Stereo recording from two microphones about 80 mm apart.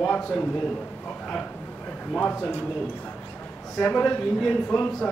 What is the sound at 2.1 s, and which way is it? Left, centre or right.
Speech, centre.